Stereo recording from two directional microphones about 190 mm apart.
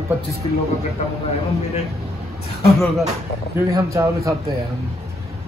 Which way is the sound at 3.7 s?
15° right (ahead or behind).